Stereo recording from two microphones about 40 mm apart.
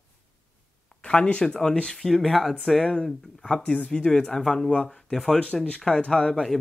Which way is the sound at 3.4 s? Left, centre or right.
Left.